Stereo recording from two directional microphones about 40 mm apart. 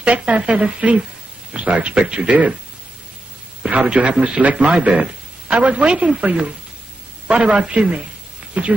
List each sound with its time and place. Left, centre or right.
0.0 s speech: right
3.6 s speech: right